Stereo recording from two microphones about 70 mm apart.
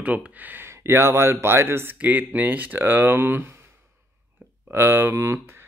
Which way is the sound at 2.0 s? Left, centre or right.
Right.